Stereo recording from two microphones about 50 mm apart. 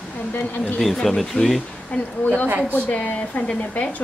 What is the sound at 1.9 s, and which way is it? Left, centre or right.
A woman's voice, left.